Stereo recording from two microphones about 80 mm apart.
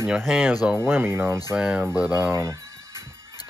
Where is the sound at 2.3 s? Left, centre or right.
Right.